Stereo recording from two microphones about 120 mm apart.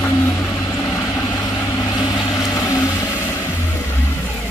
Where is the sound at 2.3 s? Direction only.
25° left (ahead or behind).